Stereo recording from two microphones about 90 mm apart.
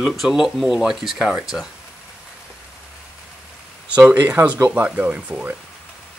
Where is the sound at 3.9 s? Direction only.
20° right (ahead or behind).